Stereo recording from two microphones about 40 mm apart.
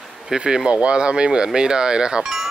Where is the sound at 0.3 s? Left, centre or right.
Right.